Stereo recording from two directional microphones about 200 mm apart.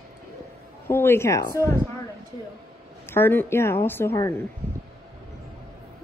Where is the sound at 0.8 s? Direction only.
10° left (ahead or behind).